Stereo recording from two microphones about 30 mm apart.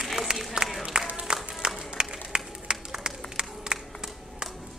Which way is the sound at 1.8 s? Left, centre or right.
Right.